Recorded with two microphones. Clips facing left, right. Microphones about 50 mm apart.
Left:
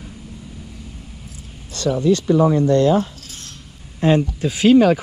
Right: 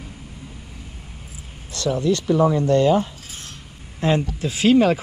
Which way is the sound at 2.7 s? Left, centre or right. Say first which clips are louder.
Left 1 dB; right.